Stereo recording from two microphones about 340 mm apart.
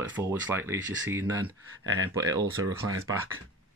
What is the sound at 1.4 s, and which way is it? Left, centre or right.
Speech, right.